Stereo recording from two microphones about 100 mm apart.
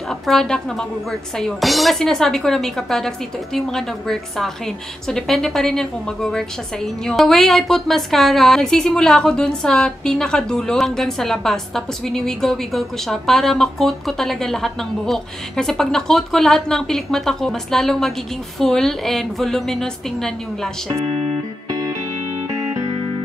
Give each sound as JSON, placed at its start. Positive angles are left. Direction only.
{"t": 0.1, "sound": "a woman's voice", "side_deg": 5}
{"t": 21.6, "sound": "music", "side_deg": -40}